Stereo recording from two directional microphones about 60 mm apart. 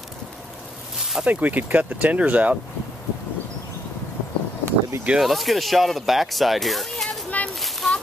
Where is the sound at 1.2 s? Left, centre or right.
Right.